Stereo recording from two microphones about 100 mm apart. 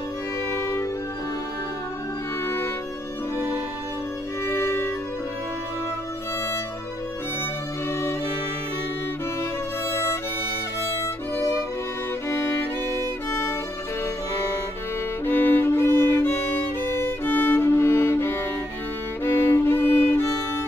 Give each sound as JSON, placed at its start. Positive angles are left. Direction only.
{"t": 0.5, "sound": "music", "side_deg": 25}
{"t": 4.5, "sound": "music", "side_deg": 25}
{"t": 9.8, "sound": "music", "side_deg": 25}
{"t": 11.3, "sound": "music", "side_deg": 25}
{"t": 15.2, "sound": "music", "side_deg": 20}